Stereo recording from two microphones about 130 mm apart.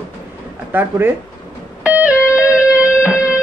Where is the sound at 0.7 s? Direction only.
15° right (ahead or behind).